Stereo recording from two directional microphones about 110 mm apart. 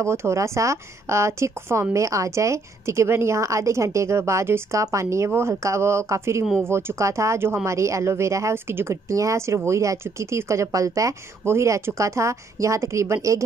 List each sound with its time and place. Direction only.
0.0 s speech: 25° right (ahead or behind)